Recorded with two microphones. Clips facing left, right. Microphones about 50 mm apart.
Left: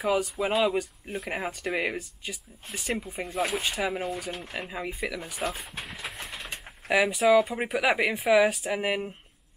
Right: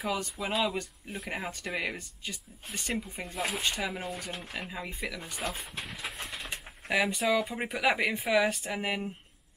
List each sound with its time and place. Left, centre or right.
0.1 s speech: centre